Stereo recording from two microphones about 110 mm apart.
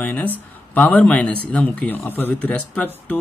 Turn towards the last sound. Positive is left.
turn(degrees=15)  # may be behind; listen again after turning